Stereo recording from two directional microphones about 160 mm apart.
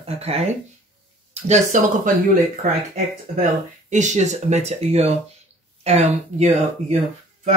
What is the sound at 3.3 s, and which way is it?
Speech, 45° right (ahead or behind).